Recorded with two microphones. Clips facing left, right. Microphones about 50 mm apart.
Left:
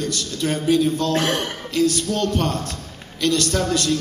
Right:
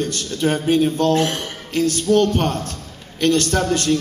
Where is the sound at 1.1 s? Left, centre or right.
Left.